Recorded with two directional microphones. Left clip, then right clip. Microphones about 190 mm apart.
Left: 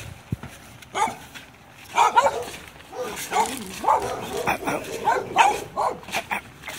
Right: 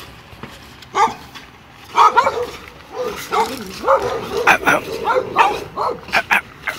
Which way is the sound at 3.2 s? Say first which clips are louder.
Right 4 dB; 25° left (ahead or behind).